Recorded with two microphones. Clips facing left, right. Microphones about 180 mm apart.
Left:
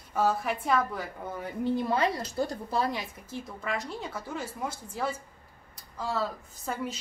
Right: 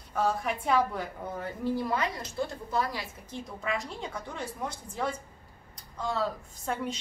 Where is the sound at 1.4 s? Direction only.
25° left (ahead or behind).